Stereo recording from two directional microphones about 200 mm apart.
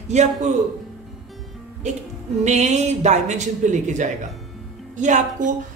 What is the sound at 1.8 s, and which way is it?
A woman's voice, 35° right (ahead or behind).